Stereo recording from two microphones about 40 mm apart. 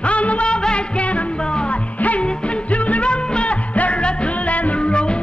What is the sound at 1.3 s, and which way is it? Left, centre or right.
Music, left.